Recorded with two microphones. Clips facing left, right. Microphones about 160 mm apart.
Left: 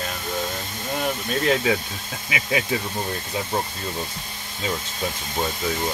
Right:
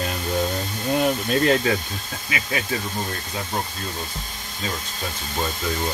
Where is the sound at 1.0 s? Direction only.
Centre (ahead or behind).